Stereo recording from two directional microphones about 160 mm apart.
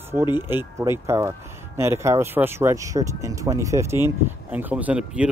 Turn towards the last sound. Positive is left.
turn(degrees=-10)  # may be behind; listen again after turning